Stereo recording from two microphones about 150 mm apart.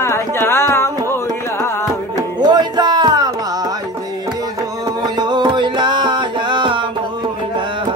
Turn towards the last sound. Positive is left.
turn(degrees=-30)  # may be behind; listen again after turning